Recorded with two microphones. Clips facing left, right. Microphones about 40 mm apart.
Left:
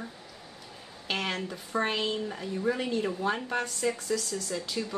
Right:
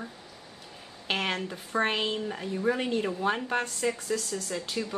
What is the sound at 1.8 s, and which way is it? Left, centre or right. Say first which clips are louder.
Speech: right 1 dB; right.